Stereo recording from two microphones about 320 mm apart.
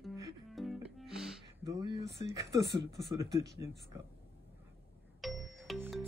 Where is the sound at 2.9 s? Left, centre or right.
Centre.